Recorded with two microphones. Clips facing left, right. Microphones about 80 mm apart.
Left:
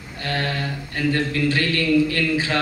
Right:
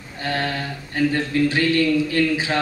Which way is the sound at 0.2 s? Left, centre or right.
Centre.